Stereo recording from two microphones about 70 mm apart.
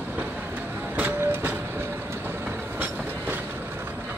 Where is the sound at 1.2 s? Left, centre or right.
Right.